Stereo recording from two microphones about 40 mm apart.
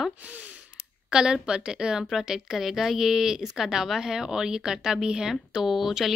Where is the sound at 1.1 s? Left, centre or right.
Centre.